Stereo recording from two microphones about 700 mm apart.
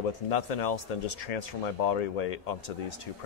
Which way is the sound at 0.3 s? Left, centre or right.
Left.